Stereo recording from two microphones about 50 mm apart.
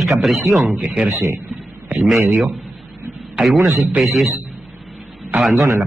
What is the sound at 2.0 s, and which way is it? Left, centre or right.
Speech, centre.